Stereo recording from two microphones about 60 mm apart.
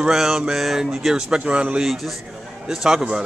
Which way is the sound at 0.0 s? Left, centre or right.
Centre.